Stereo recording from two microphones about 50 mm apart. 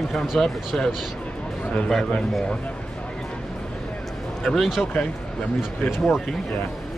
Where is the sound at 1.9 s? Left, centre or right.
Centre.